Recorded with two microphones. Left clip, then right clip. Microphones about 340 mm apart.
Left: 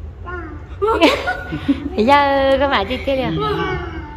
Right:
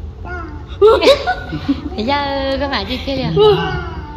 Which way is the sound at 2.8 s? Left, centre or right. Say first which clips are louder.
Left 1 dB; left.